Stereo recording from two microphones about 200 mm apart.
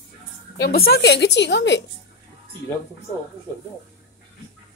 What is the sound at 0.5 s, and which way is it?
A woman's voice, 50° left (ahead or behind).